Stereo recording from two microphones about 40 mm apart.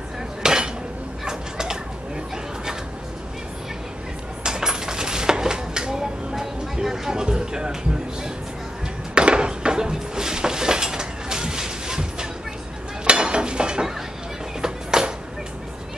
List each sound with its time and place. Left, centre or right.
0.4 s dishes: centre
1.2 s a sound: centre
4.4 s dishes: centre
9.1 s a sound: right
13.0 s dishes: right
14.6 s music: centre